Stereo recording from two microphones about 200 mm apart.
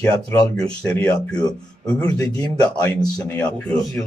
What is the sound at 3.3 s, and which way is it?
Speech, 5° left (ahead or behind).